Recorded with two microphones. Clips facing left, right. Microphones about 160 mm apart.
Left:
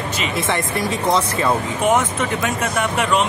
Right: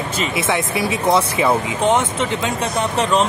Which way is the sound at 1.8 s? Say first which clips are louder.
Left 1 dB; 25° right (ahead or behind).